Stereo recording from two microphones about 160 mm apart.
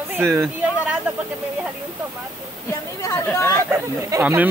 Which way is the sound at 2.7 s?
20° left (ahead or behind).